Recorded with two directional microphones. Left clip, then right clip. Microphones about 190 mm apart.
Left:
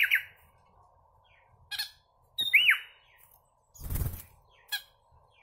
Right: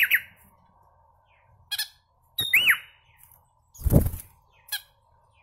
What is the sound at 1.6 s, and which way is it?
Squawk, 30° right (ahead or behind).